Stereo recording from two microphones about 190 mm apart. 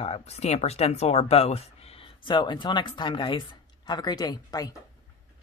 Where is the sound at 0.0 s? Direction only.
35° left (ahead or behind).